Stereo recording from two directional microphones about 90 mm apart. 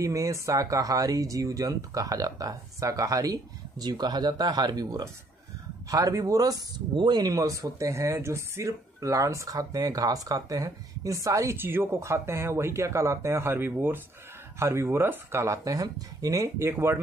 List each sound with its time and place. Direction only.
0.0 s speech: 35° right (ahead or behind)
11.5 s speech: 25° right (ahead or behind)